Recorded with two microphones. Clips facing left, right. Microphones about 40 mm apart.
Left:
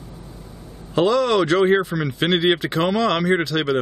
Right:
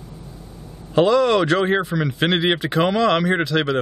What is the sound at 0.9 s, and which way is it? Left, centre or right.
Speech, centre.